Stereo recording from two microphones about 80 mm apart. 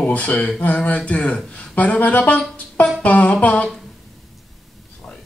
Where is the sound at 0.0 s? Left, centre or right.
Centre.